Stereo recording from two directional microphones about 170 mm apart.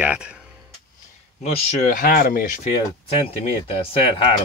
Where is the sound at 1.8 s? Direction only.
55° left (ahead or behind).